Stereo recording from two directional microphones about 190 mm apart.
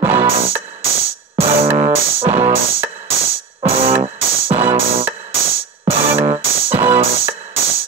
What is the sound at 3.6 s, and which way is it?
Music, 30° right (ahead or behind).